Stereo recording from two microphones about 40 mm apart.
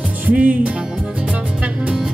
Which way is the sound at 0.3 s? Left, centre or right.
Right.